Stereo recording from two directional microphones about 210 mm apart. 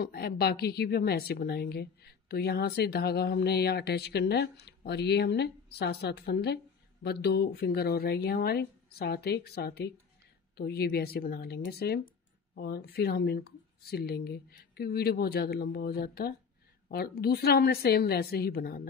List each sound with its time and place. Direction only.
0.0 s a woman's voice: 50° left (ahead or behind)